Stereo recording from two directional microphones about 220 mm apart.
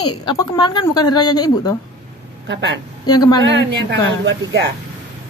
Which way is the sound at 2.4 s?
50° right (ahead or behind).